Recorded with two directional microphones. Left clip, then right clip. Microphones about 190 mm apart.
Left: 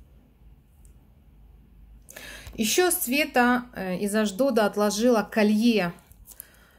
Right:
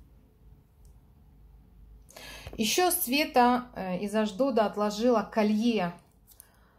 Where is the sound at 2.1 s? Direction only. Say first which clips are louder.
Left 3 dB; 15° left (ahead or behind).